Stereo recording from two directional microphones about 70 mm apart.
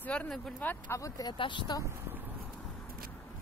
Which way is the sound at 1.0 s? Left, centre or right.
Left.